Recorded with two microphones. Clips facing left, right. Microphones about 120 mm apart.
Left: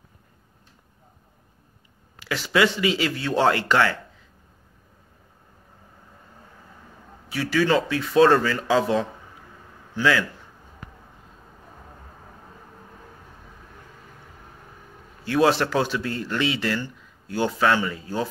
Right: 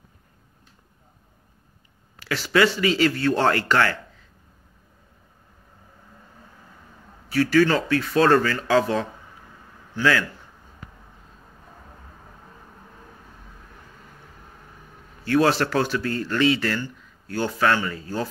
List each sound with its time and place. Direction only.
2.1 s a sound: 15° left (ahead or behind)
2.5 s a man's voice: 15° left (ahead or behind)
7.5 s a man's voice: 15° left (ahead or behind)
15.2 s a man's voice: 15° left (ahead or behind)